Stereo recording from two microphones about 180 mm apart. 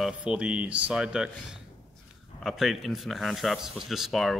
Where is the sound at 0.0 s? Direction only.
5° right (ahead or behind).